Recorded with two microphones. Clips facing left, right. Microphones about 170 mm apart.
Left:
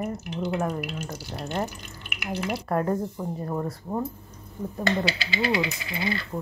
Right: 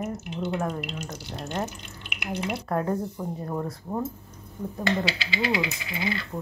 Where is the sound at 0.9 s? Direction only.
5° left (ahead or behind).